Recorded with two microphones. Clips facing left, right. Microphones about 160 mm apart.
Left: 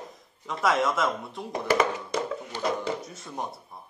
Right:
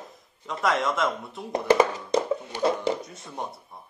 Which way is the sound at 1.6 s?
25° right (ahead or behind).